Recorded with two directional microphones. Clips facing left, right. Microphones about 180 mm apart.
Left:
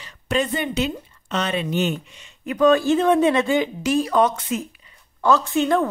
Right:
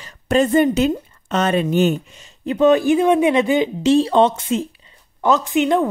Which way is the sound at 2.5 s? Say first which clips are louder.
Right 3 dB; 20° right (ahead or behind).